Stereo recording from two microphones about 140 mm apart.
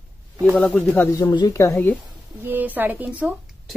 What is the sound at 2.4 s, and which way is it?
Speech, 15° right (ahead or behind).